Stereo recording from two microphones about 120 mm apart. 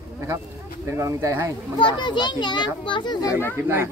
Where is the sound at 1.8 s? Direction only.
40° left (ahead or behind).